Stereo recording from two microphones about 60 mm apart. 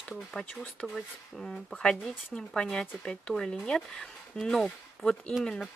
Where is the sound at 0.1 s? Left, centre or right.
Centre.